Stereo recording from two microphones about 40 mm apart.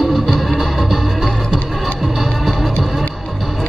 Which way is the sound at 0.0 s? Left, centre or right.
Centre.